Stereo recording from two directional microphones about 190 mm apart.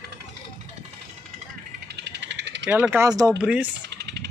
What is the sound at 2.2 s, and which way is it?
Vehicle, 65° right (ahead or behind).